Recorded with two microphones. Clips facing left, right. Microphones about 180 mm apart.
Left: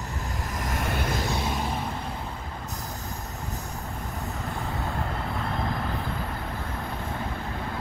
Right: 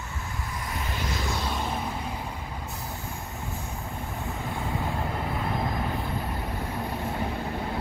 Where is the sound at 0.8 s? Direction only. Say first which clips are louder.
Left 5 dB; 55° left (ahead or behind).